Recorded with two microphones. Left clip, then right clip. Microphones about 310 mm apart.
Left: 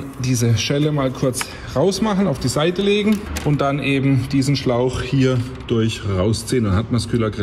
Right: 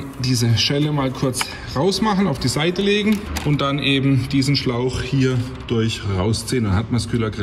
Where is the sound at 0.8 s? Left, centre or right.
Centre.